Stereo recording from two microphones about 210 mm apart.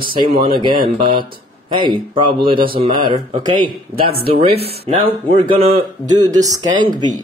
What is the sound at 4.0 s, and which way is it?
Speech, 45° right (ahead or behind).